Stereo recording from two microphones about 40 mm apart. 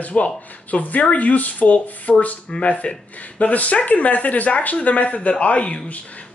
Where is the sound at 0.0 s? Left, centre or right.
Left.